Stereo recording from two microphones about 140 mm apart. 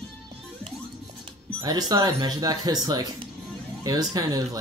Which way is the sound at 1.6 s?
30° right (ahead or behind).